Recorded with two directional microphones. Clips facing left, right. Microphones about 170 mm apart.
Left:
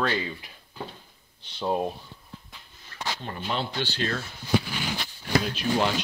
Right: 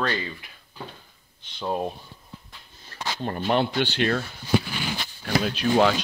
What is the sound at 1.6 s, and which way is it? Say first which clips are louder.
Speech: left 1 dB; 5° left (ahead or behind).